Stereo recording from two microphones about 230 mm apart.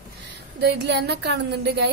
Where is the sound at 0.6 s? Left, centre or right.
Right.